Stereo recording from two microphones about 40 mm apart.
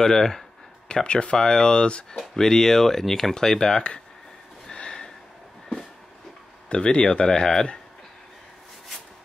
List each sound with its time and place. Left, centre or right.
0.0 s speech: centre
0.8 s speech: left
1.4 s speech: centre
2.1 s speech: centre
4.7 s a sound: left
6.7 s speech: left